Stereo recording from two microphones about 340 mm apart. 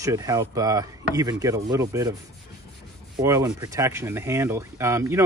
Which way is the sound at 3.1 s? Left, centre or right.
Centre.